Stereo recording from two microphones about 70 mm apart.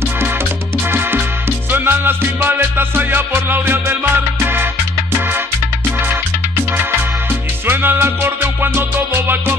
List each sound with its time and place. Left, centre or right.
1.7 s music: right
7.6 s music: right